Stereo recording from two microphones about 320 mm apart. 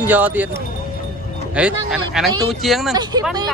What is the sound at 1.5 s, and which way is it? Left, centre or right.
Speech, centre.